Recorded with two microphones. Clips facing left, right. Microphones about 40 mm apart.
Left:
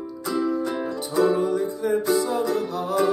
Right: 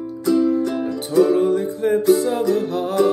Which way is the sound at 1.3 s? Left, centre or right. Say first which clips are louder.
Right 5 dB; right.